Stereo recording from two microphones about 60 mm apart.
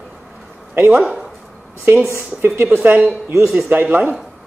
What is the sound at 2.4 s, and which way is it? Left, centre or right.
Speech, right.